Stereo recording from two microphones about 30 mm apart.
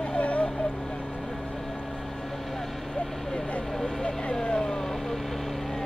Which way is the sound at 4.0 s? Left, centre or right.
Left.